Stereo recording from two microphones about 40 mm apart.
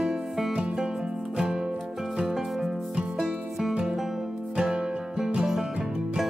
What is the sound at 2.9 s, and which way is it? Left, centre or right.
Music, centre.